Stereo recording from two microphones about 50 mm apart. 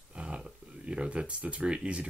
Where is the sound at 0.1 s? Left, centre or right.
Right.